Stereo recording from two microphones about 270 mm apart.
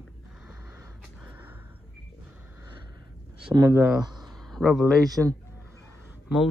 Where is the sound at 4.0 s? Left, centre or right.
Centre.